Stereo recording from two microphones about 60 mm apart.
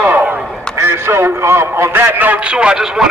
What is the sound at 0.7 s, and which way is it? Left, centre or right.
A man's voice, right.